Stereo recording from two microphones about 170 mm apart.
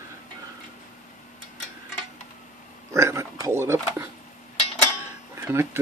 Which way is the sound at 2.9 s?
15° right (ahead or behind).